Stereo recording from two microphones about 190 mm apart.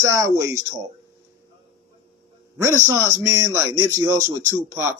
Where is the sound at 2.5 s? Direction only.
15° right (ahead or behind).